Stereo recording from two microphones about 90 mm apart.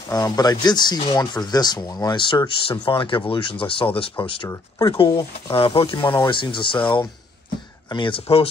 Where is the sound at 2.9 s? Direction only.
65° left (ahead or behind).